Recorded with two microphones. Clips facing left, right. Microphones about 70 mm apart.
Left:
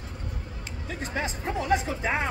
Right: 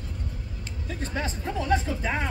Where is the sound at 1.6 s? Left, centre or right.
Left.